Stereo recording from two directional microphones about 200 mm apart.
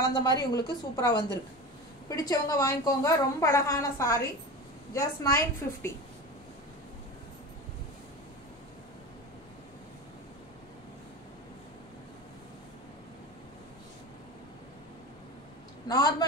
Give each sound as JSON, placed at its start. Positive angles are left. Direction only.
{"t": 0.0, "sound": "a woman's voice", "side_deg": 20}
{"t": 15.9, "sound": "a woman's voice", "side_deg": 20}